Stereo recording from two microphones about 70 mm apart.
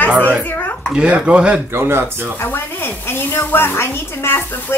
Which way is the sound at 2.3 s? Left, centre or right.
Left.